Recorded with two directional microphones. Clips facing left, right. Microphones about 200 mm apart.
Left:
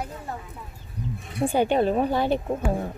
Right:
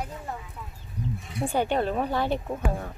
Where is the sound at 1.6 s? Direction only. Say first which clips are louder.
Left 4 dB; 15° left (ahead or behind).